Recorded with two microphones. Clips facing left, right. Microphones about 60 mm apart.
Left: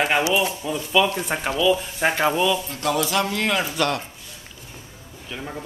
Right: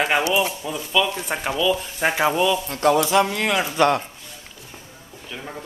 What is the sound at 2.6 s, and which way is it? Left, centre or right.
Speech, right.